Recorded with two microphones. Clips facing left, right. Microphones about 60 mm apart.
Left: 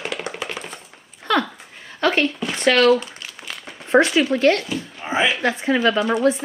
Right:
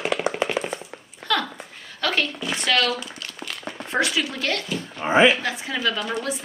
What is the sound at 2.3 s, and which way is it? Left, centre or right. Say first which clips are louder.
Speech: left 5 dB; left.